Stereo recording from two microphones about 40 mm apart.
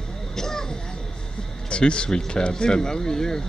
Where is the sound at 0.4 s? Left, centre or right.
Centre.